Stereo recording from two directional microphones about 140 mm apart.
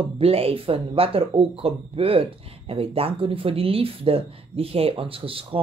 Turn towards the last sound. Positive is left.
turn(degrees=-40)  # may be behind; listen again after turning